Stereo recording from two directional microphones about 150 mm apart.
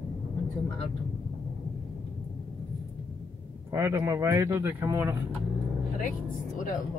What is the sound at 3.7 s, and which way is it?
Speech, 20° right (ahead or behind).